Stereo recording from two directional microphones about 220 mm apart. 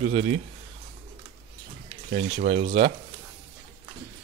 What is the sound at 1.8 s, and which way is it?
Speech, 35° right (ahead or behind).